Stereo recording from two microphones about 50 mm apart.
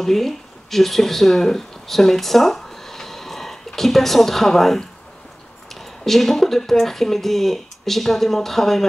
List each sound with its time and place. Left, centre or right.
0.0 s speech: centre